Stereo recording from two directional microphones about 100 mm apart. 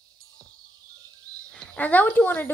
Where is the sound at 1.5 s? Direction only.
15° left (ahead or behind).